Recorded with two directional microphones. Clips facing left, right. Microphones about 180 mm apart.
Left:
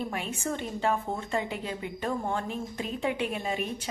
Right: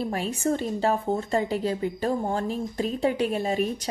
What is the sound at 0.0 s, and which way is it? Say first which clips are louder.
A woman's voice: right 6 dB; 35° right (ahead or behind).